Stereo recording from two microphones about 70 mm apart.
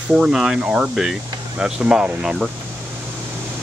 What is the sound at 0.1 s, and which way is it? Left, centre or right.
Speech, centre.